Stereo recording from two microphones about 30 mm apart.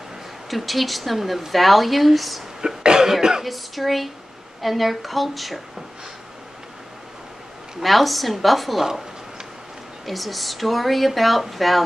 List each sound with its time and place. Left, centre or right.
0.5 s speech: centre
2.6 s cough: right
3.0 s speech: centre
3.4 s speech: centre
7.8 s speech: centre
10.0 s speech: centre